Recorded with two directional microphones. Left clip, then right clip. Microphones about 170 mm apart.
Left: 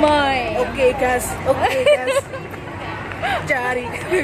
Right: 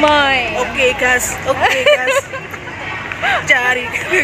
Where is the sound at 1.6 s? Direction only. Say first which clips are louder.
Right 5 dB; 10° right (ahead or behind).